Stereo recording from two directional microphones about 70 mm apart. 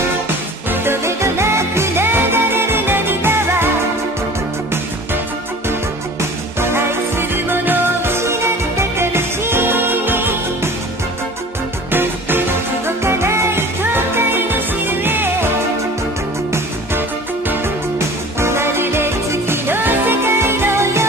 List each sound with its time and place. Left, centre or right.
0.7 s music: right
6.6 s music: right
11.9 s music: right
17.9 s music: right